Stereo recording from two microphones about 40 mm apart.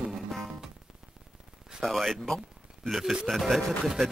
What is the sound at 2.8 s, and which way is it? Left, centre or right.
Speech, centre.